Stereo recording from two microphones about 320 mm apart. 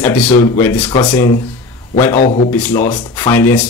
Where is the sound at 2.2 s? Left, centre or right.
Left.